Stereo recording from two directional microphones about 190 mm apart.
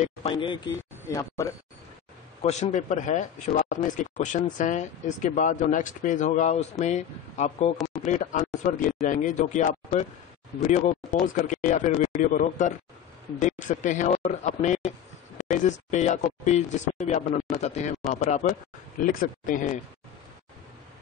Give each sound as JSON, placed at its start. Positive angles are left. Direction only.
{"t": 0.0, "sound": "speech", "side_deg": 30}
{"t": 2.4, "sound": "speech", "side_deg": 40}